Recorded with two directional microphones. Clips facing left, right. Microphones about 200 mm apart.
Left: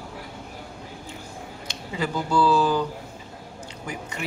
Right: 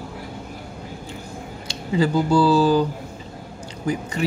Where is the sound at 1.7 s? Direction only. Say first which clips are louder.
Right 9 dB; 35° right (ahead or behind).